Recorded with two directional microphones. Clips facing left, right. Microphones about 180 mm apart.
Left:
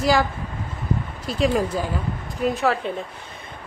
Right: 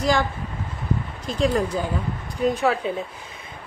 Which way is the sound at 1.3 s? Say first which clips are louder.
Left 1 dB; centre (ahead or behind).